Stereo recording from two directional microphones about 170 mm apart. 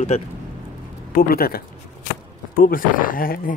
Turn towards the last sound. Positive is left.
turn(degrees=55)  # may be behind; listen again after turning